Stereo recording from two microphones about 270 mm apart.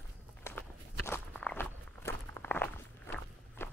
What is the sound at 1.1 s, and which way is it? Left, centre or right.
Walk, centre.